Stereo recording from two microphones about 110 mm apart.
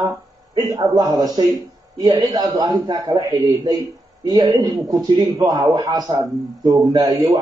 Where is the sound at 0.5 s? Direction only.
35° right (ahead or behind).